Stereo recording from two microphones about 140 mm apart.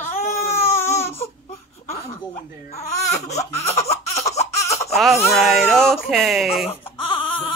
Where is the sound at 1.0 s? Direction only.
20° left (ahead or behind).